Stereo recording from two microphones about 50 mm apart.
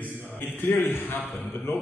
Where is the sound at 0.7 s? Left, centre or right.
Left.